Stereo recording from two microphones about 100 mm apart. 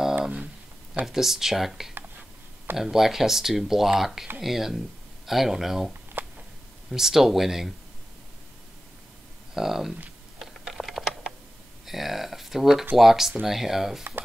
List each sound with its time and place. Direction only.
0.1 s a sound: 15° right (ahead or behind)
1.0 s speech: 5° right (ahead or behind)
6.2 s a sound: 20° right (ahead or behind)
6.9 s speech: 5° right (ahead or behind)
9.5 s speech: 5° right (ahead or behind)
10.4 s typing: centre (ahead or behind)
11.8 s speech: centre (ahead or behind)